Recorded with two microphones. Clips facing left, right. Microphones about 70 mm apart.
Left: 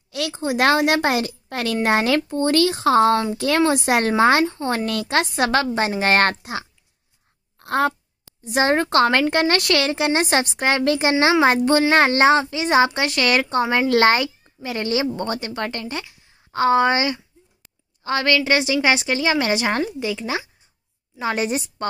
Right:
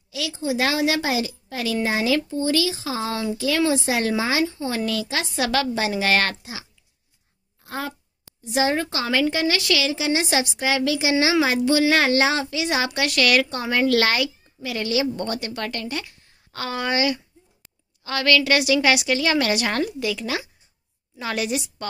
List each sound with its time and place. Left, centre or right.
0.3 s a woman's voice: left
5.5 s a woman's voice: left
7.5 s a sound: left
8.5 s a woman's voice: left